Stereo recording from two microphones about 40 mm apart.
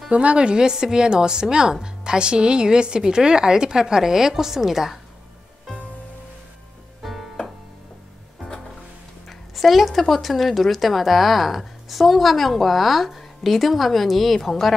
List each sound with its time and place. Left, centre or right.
0.1 s a woman's voice: right; by 4.9 s centre
7.0 s music: centre
9.3 s speech: centre